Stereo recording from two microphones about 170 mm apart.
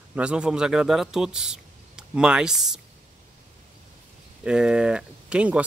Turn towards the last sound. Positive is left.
turn(degrees=-5)  # may be behind; listen again after turning